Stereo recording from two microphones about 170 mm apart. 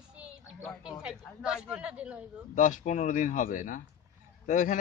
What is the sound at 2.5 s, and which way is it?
A man's voice, 50° left (ahead or behind).